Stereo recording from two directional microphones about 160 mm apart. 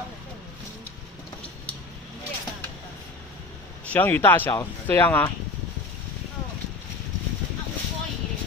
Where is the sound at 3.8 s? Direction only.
10° left (ahead or behind).